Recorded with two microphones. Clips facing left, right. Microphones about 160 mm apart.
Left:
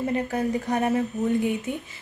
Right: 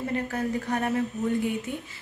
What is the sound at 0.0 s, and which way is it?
Speech, 15° left (ahead or behind).